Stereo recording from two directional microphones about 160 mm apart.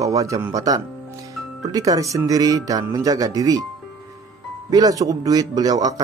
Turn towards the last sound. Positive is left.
turn(degrees=-25)  # may be behind; listen again after turning